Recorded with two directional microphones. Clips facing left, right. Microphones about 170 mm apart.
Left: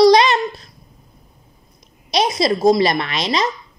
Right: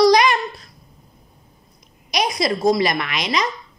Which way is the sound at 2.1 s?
25° left (ahead or behind).